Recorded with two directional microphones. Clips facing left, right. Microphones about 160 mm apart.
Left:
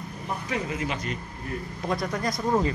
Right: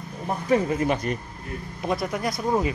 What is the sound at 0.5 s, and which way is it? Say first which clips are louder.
Speech: right 10 dB; 45° right (ahead or behind).